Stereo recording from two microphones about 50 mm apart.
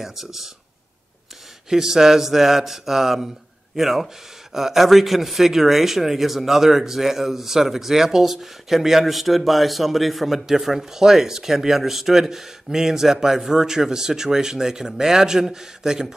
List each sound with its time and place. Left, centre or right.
0.0 s speech: centre
1.7 s a man's voice: centre